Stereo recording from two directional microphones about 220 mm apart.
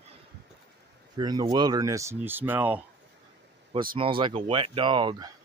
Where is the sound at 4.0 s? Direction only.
25° right (ahead or behind).